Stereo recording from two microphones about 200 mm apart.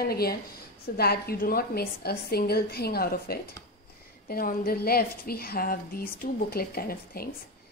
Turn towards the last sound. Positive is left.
turn(degrees=50)  # may be behind; listen again after turning